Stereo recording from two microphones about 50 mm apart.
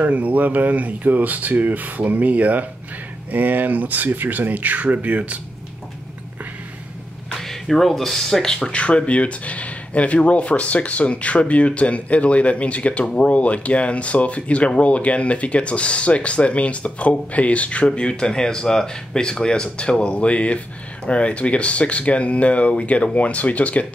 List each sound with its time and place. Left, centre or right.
0.0 s speech: right
7.3 s speech: centre
8.7 s speech: left